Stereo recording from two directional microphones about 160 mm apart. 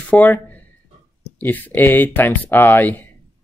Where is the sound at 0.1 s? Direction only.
10° left (ahead or behind).